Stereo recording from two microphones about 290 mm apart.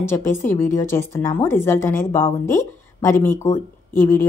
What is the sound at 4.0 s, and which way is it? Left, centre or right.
Speech, left.